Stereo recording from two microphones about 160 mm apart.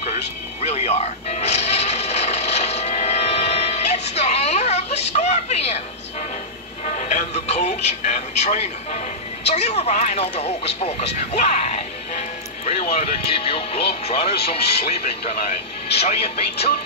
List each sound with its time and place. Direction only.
0.6 s music: 40° left (ahead or behind)
6.9 s television: 50° left (ahead or behind)
9.5 s speech: 40° left (ahead or behind)
16.0 s speech: 40° left (ahead or behind)